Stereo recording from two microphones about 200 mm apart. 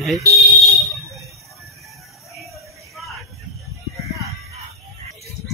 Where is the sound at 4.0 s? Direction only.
15° right (ahead or behind).